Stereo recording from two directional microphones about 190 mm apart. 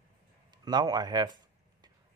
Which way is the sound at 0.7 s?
20° right (ahead or behind).